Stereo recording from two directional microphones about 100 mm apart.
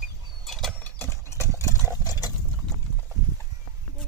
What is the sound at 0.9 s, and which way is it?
Clip-clop, 25° left (ahead or behind).